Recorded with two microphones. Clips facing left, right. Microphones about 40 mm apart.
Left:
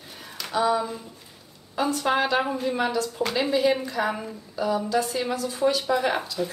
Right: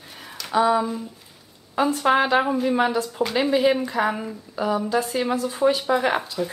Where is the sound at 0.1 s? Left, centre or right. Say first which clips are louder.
Right 2 dB; centre.